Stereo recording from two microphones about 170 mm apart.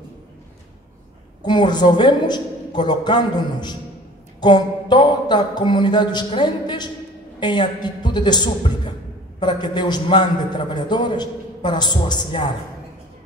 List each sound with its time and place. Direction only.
1.4 s a man's voice: 25° left (ahead or behind)